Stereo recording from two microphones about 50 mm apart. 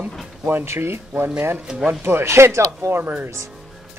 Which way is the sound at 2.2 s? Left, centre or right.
Right.